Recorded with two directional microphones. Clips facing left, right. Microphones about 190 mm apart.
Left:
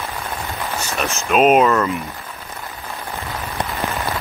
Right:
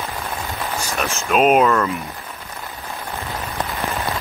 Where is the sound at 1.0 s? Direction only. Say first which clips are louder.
Left 2 dB; centre (ahead or behind).